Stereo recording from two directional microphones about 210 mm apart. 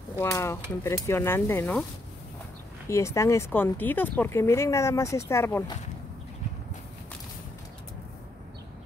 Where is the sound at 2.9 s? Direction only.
15° left (ahead or behind).